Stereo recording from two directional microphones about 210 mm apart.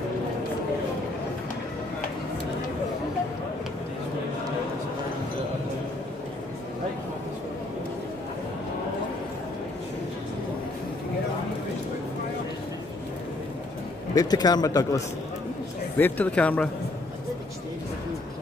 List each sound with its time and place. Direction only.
14.1 s speech: 20° left (ahead or behind)